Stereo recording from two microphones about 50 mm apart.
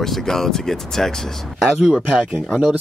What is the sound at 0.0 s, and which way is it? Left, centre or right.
Speech, centre.